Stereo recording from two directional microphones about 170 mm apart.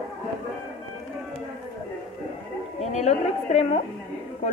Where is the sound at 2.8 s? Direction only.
40° left (ahead or behind).